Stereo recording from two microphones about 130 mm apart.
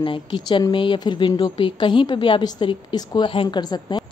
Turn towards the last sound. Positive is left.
turn(degrees=30)  # may be behind; listen again after turning